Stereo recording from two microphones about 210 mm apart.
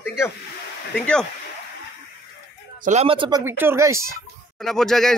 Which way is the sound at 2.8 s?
30° right (ahead or behind).